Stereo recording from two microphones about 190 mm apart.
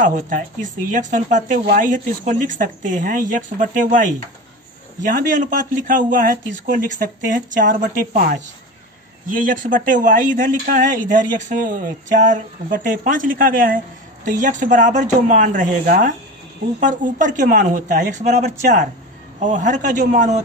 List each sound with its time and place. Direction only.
0.0 s speech: 45° right (ahead or behind)